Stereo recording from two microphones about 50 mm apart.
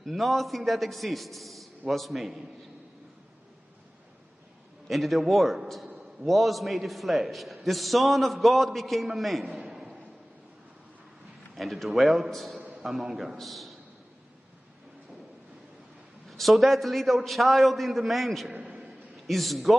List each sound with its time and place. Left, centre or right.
0.0 s a man's voice: centre
4.8 s a man's voice: centre
11.5 s a man's voice: centre
16.3 s a man's voice: centre
18.5 s a sound: right
19.2 s a man's voice: centre